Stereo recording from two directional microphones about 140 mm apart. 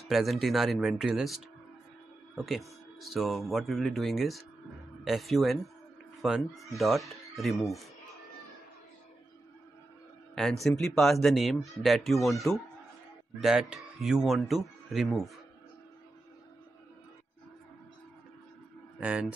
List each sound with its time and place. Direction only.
0.0 s speech: centre (ahead or behind)
10.3 s speech: centre (ahead or behind)
18.9 s speech: 10° right (ahead or behind)